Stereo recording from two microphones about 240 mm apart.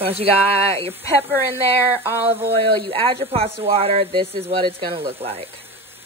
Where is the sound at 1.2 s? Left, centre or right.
Centre.